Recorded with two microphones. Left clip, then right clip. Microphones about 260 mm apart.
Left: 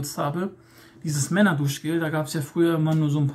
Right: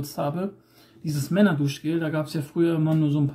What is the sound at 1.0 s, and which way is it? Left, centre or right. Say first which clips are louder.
Speech: left 1 dB; centre.